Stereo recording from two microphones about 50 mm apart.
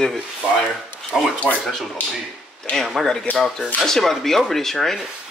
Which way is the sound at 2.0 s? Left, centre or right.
Left.